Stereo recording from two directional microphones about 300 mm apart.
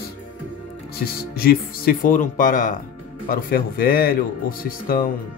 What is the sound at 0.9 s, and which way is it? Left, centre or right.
Speech, left.